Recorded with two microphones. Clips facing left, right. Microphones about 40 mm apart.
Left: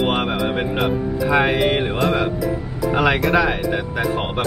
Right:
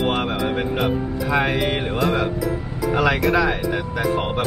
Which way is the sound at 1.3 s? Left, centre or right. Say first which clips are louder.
Left 3 dB; centre.